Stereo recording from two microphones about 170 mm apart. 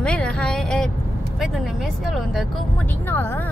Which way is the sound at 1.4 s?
Centre (ahead or behind).